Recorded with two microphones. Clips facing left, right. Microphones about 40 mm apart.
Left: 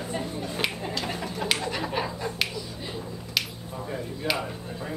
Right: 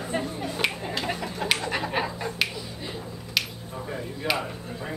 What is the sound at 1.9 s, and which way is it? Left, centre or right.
Finger snapping, centre.